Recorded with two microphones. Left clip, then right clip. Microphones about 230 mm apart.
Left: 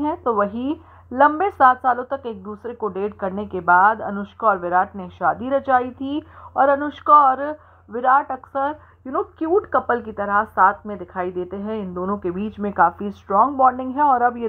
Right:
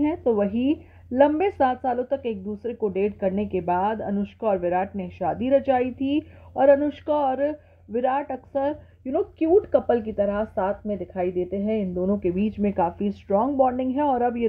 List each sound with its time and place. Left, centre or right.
0.0 s a woman's voice: left